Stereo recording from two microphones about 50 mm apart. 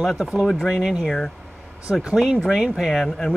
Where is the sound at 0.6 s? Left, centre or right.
Centre.